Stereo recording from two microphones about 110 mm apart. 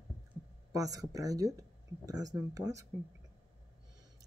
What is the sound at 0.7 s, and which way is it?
A man's voice, 30° right (ahead or behind).